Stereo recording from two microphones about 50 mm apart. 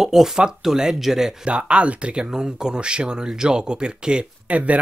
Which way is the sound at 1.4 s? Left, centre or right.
Right.